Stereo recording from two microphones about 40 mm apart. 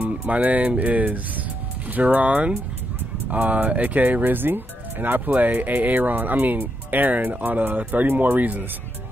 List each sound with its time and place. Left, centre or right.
0.3 s speech: right